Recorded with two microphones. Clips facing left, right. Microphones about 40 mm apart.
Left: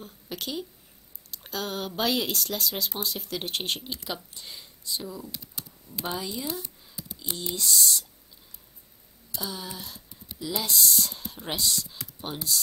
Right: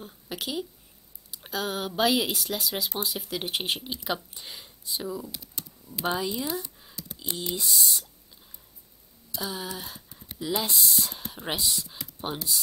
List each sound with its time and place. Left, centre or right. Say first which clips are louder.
0.0 s speech: right 1 dB; centre
5.1 s speech: right 4 dB; centre
6.0 s speech: right 4 dB; centre
7.5 s speech: left 3 dB; centre
9.4 s speech: right 2 dB; centre